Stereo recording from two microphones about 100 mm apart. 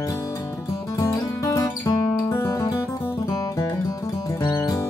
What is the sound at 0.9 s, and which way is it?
Music, 35° left (ahead or behind).